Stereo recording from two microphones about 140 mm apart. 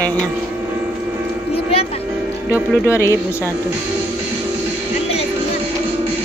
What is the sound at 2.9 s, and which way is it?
Speech, 20° left (ahead or behind).